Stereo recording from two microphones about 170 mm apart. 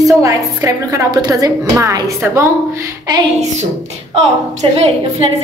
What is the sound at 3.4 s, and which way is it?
A woman's voice, 40° right (ahead or behind).